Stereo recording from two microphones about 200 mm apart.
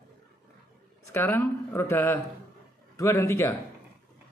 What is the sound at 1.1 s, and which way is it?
Speech, 10° left (ahead or behind).